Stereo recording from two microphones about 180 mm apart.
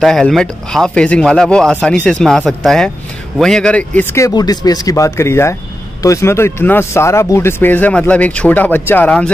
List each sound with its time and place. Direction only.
0.0 s speech: centre (ahead or behind)